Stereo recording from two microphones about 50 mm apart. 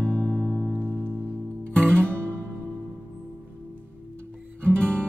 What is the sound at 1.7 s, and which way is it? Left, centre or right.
Music, centre.